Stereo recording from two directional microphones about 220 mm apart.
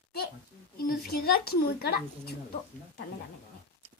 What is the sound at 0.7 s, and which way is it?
Speech, 45° left (ahead or behind).